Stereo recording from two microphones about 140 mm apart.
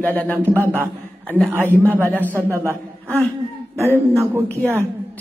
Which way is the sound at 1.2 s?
10° left (ahead or behind).